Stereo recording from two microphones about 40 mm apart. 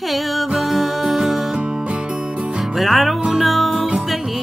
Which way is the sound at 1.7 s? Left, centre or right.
Right.